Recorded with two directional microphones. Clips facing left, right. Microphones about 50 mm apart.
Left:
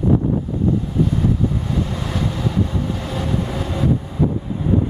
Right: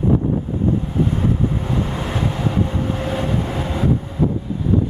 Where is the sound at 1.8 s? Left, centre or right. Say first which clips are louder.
Right 1 dB; right.